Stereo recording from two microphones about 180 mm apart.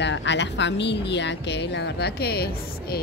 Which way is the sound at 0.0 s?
85° left.